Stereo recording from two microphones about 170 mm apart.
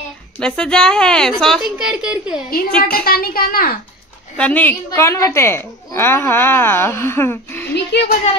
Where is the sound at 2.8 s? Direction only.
60° left (ahead or behind).